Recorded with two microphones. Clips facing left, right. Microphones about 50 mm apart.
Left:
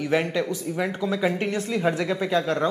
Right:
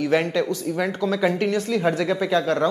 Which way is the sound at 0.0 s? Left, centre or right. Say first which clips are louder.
Right 3 dB; centre.